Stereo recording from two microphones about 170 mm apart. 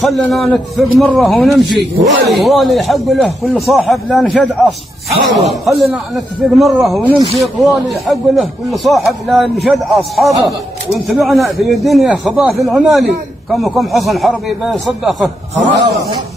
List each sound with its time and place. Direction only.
0.0 s speech: centre (ahead or behind)
15.5 s a man's voice: 90° right